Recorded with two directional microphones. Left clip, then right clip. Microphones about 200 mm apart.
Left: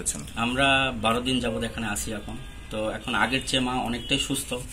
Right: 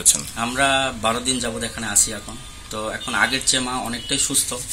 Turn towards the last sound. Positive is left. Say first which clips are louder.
# right 2 dB
turn(degrees=-5)  # may be behind; listen again after turning